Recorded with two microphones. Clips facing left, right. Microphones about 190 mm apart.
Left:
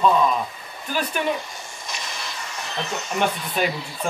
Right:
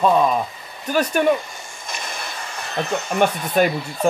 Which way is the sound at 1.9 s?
50° right (ahead or behind).